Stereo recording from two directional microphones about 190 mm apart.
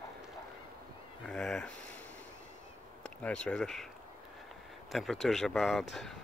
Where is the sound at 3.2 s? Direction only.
5° left (ahead or behind).